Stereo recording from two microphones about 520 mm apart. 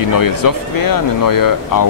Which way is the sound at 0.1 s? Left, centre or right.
Left.